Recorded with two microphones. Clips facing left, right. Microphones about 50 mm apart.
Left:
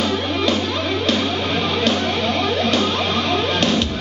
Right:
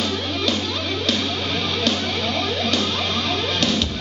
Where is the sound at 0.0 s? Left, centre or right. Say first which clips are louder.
Left 4 dB; centre.